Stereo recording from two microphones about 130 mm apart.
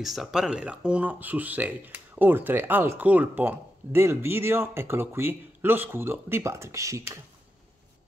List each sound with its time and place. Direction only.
0.0 s speech: centre (ahead or behind); by 7.2 s 25° right (ahead or behind)